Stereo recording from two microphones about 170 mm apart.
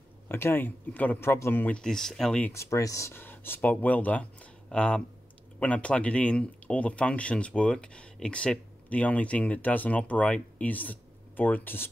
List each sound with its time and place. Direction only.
0.3 s speech: 15° left (ahead or behind)
2.5 s speech: 15° left (ahead or behind)